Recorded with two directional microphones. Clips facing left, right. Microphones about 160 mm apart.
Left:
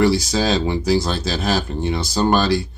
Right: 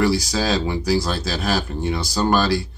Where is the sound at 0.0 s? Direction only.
25° left (ahead or behind).